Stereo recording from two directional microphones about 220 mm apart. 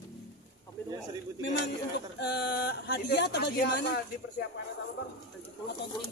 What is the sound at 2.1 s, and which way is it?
Speech, 50° left (ahead or behind).